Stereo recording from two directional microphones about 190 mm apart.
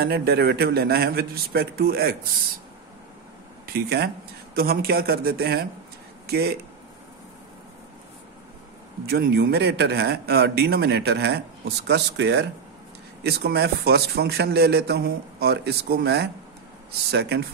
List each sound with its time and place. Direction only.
0.0 s a man's voice: 55° right (ahead or behind)
3.6 s a man's voice: 55° right (ahead or behind)
9.0 s a man's voice: 60° right (ahead or behind)